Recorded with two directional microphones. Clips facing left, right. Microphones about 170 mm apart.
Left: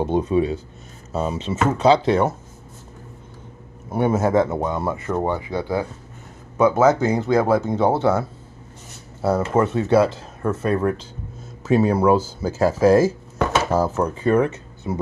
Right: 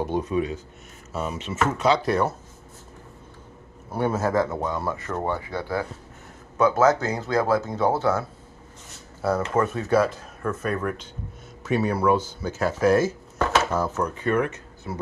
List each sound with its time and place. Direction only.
0.0 s speech: 25° left (ahead or behind)
3.9 s speech: 20° left (ahead or behind)
9.5 s speech: 25° left (ahead or behind)